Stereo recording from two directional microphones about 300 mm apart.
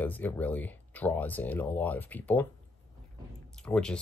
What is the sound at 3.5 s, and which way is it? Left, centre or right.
Speech, centre.